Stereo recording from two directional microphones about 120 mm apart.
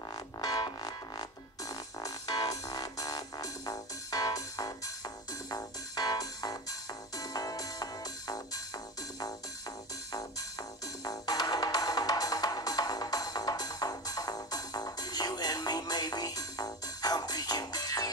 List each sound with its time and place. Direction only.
0.1 s music: 30° left (ahead or behind)
11.1 s music: 30° left (ahead or behind)